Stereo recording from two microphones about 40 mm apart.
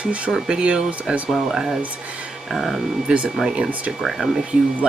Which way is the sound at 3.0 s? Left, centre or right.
Right.